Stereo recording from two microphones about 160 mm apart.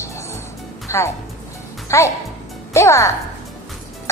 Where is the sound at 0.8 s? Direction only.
20° left (ahead or behind).